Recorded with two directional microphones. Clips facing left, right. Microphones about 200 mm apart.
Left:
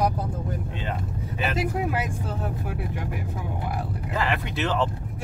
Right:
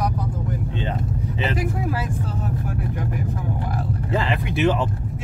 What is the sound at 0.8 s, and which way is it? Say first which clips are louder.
Speech: right 4 dB; 25° right (ahead or behind).